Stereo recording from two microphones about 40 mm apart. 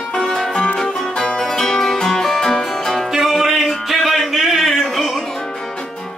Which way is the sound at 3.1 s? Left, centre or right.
Centre.